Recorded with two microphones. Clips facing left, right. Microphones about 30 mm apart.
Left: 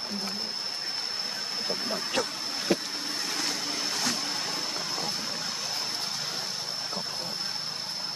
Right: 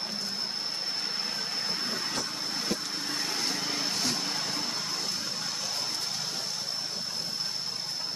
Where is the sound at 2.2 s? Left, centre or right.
Left.